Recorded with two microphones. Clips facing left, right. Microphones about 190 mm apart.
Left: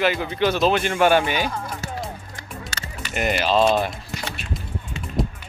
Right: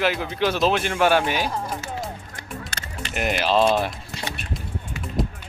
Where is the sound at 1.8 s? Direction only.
35° left (ahead or behind).